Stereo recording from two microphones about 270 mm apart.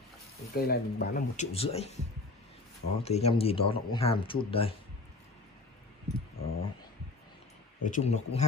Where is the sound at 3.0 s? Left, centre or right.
Left.